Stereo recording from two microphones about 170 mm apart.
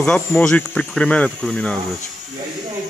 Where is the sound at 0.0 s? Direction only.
5° left (ahead or behind).